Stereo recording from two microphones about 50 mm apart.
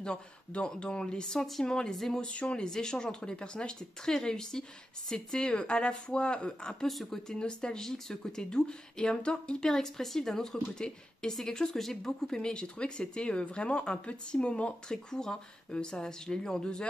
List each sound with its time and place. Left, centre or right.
0.0 s speech: centre
2.3 s a woman's voice: left
6.9 s speech: centre
7.2 s speech: centre